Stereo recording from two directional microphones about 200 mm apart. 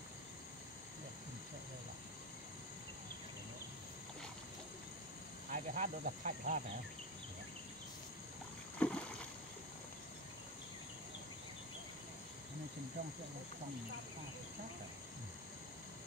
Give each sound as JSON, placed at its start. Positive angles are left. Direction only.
{"t": 5.5, "sound": "speech", "side_deg": -40}
{"t": 8.7, "sound": "boat", "side_deg": 5}